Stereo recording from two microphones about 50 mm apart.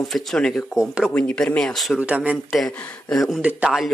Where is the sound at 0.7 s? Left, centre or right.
Centre.